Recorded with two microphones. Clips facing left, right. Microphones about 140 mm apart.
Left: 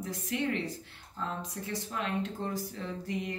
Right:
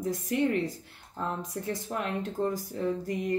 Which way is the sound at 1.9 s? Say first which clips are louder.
Left 1 dB; 45° right (ahead or behind).